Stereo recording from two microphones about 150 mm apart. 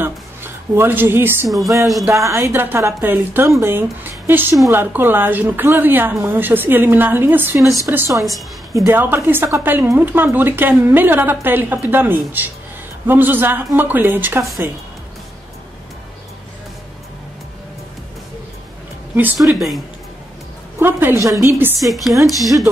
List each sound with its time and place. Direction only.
0.0 s music: 15° right (ahead or behind)
2.0 s a woman's voice: 20° right (ahead or behind)
19.1 s speech: 10° right (ahead or behind)
20.8 s a woman's voice: 15° right (ahead or behind)
21.7 s speech: centre (ahead or behind)